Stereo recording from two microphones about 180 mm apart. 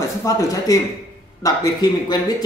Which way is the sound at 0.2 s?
20° left (ahead or behind).